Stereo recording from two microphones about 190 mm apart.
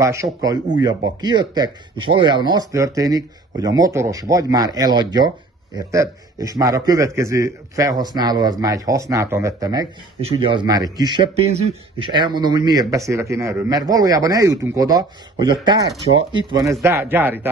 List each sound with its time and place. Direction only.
0.0 s a man's voice: 15° right (ahead or behind)
10.2 s a man's voice: 30° right (ahead or behind)
16.8 s a man's voice: 10° right (ahead or behind)